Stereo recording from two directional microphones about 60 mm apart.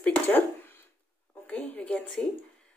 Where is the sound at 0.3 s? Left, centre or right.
Left.